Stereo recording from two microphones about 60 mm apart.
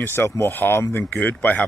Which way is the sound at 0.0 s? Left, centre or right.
Left.